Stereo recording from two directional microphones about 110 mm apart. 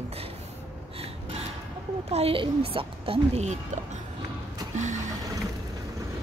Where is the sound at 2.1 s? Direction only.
65° right (ahead or behind).